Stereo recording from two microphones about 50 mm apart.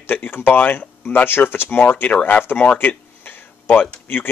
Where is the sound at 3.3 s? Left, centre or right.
Left.